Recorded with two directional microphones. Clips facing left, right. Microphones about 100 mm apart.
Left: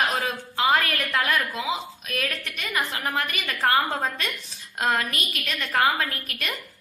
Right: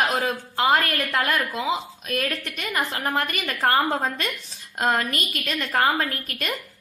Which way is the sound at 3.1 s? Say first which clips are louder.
Right 2 dB; 40° right (ahead or behind).